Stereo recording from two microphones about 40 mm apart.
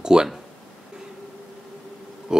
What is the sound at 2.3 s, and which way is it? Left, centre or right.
Pig, centre.